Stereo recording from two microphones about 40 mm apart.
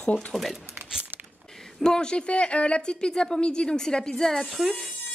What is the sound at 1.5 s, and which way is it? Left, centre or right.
A woman's voice, centre.